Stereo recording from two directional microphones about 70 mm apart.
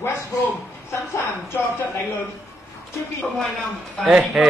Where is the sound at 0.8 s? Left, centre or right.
Left.